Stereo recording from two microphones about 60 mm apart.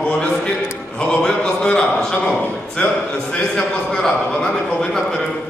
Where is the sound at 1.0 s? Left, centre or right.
Centre.